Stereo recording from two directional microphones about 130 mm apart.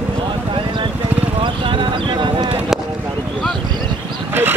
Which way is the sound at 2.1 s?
35° right (ahead or behind).